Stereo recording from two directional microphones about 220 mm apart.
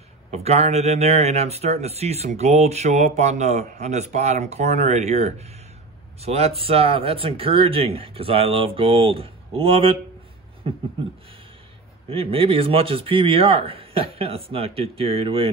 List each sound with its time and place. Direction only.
0.3 s speech: 30° right (ahead or behind)
12.1 s speech: 25° right (ahead or behind)